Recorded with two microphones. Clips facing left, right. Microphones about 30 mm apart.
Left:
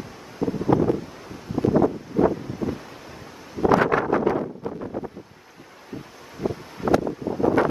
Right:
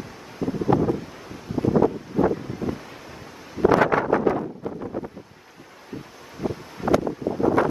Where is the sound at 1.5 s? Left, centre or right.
Centre.